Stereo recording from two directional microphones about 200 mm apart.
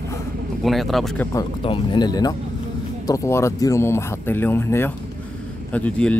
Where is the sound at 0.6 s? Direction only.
Centre (ahead or behind).